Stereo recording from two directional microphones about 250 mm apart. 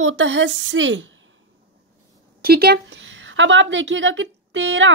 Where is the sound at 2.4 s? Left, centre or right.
Right.